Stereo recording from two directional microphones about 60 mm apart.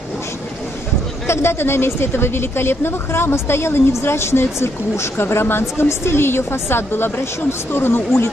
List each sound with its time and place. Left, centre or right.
1.2 s speech: left